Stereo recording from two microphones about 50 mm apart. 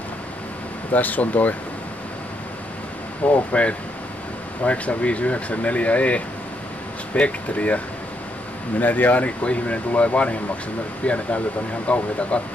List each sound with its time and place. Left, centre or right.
0.9 s speech: left
3.2 s speech: left
4.6 s speech: left